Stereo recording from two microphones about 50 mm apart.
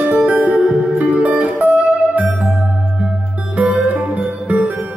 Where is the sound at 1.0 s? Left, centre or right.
Right.